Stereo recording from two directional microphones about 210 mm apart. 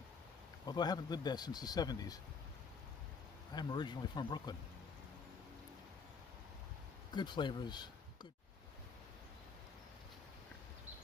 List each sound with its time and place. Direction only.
0.7 s speech: 20° left (ahead or behind)
3.5 s speech: 20° left (ahead or behind)
7.2 s speech: 20° left (ahead or behind)